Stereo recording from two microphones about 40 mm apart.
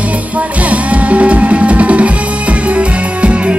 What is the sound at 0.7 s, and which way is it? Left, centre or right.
Music, right.